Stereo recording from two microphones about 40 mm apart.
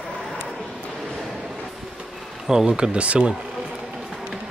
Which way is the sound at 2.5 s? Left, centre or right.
Centre.